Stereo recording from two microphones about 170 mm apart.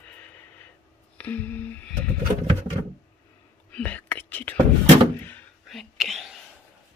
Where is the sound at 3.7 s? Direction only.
10° left (ahead or behind).